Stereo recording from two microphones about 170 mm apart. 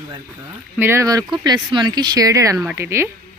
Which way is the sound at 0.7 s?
15° right (ahead or behind).